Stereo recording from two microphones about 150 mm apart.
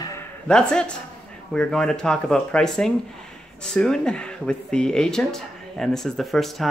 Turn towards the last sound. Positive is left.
turn(degrees=0)  # may be behind; listen again after turning